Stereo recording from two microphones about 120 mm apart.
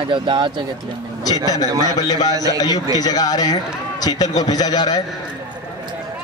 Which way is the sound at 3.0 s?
35° left (ahead or behind).